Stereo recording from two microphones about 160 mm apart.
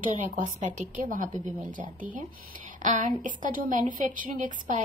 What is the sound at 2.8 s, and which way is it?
A woman's voice, 55° right (ahead or behind).